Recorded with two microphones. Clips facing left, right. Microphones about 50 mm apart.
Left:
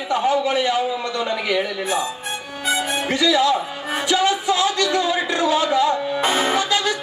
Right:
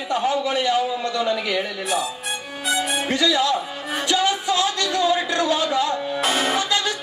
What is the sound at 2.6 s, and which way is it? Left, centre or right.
Music, centre.